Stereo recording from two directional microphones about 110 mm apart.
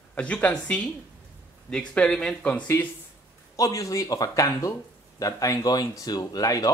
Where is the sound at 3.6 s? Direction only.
30° left (ahead or behind).